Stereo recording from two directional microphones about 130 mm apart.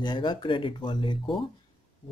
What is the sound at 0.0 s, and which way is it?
Speech, 35° left (ahead or behind).